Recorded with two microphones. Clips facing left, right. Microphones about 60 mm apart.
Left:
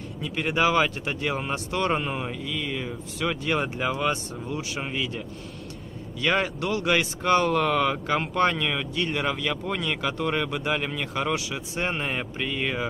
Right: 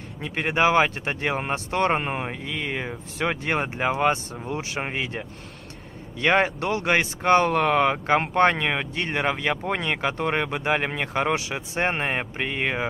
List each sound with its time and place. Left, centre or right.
0.2 s speech: right
6.2 s speech: right